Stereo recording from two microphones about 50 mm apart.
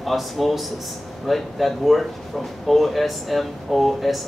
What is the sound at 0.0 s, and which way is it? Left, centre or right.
Speech, centre.